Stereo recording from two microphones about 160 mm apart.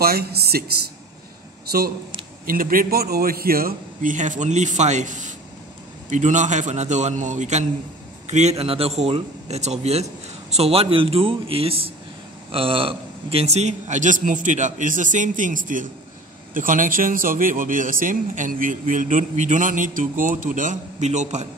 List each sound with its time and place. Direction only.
0.0 s speech: 75° right (ahead or behind)
2.4 s a man's voice: 60° right (ahead or behind)